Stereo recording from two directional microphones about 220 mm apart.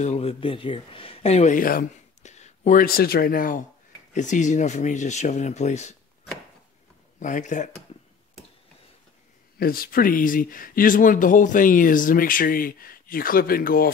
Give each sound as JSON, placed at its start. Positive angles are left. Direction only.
{"t": 0.0, "sound": "speech", "side_deg": 25}
{"t": 7.2, "sound": "speech", "side_deg": 35}
{"t": 9.6, "sound": "speech", "side_deg": 40}